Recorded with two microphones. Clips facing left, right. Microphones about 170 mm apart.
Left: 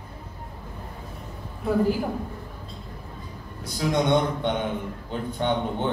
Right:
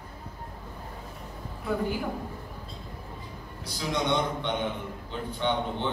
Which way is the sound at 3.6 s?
50° left (ahead or behind).